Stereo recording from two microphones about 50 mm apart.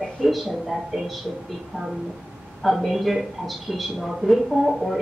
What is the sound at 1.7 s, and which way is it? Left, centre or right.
Speech, centre.